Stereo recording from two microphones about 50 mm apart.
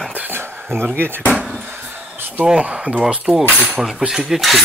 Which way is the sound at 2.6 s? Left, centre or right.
Right.